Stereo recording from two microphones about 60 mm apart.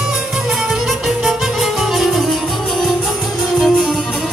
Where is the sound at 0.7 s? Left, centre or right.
Centre.